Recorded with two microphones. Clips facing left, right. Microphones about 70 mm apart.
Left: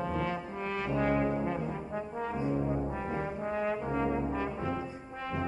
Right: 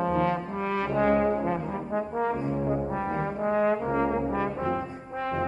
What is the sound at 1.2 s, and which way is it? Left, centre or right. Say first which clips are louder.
Brass instrument: right 5 dB; right.